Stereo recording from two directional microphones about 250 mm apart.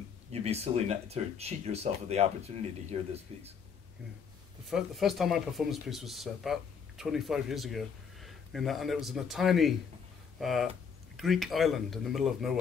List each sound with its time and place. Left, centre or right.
0.3 s speech: right
4.6 s speech: centre